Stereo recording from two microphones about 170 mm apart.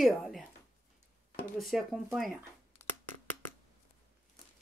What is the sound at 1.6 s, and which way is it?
Speech, centre (ahead or behind).